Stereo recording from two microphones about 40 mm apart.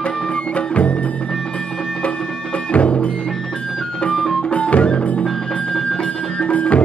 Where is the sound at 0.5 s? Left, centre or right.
Left.